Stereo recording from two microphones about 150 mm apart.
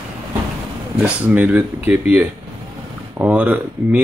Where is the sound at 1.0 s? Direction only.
10° right (ahead or behind).